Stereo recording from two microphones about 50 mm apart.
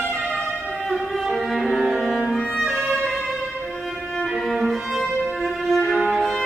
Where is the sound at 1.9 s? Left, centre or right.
Centre.